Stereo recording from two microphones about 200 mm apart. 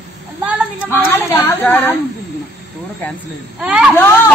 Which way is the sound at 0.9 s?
10° left (ahead or behind).